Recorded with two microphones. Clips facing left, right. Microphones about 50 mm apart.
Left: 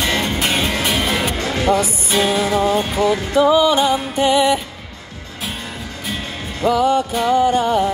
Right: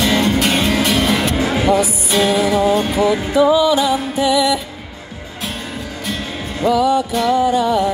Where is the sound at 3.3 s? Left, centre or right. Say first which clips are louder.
Even; left.